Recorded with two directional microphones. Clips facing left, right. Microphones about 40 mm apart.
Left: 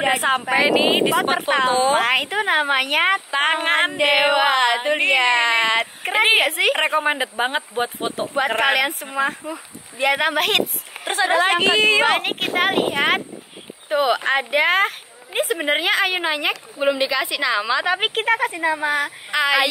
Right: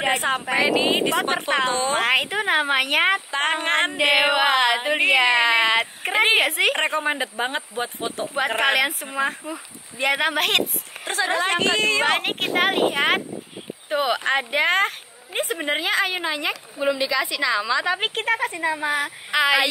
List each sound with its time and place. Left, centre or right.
0.0 s speech: centre
7.1 s speech: left
8.4 s a woman's voice: centre
15.6 s a woman's voice: centre
16.1 s a woman's voice: left
18.0 s speech: centre